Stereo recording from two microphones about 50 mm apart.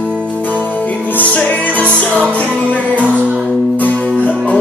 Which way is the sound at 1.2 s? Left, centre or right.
Left.